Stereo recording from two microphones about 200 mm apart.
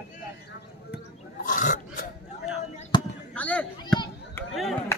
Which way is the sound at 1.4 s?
40° left (ahead or behind).